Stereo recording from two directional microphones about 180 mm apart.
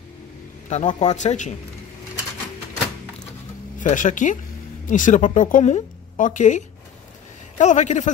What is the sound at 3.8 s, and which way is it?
Speech, 45° left (ahead or behind).